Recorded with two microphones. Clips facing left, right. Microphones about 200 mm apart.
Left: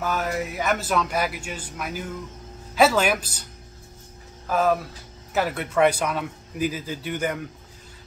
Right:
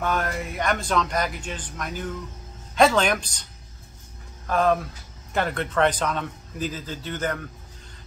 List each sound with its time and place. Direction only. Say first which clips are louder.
0.0 s speech: even; 5° left (ahead or behind)
4.5 s speech: even; 5° left (ahead or behind)